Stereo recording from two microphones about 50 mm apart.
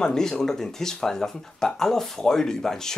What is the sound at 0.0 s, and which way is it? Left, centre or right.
Speech, centre.